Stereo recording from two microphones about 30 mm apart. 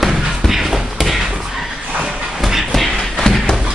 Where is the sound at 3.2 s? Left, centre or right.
Centre.